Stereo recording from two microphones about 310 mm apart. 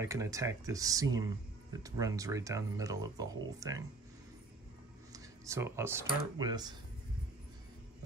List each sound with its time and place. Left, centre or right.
0.0 s speech: centre
5.1 s a sound: centre
6.3 s speech: centre